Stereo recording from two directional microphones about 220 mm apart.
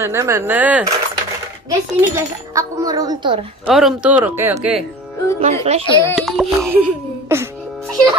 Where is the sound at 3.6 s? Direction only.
Centre (ahead or behind).